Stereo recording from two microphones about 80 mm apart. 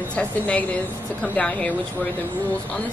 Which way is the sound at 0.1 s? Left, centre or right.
Centre.